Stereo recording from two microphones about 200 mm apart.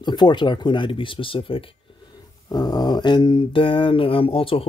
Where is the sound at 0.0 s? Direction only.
20° left (ahead or behind).